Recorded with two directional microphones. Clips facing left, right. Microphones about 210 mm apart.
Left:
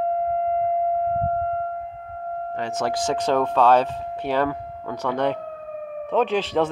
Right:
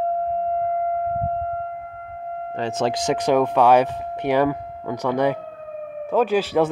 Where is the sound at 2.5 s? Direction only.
30° right (ahead or behind).